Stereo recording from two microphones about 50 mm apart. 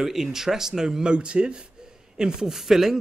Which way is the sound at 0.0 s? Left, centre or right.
Centre.